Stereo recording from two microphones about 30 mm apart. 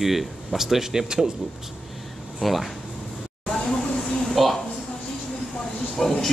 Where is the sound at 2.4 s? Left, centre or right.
Centre.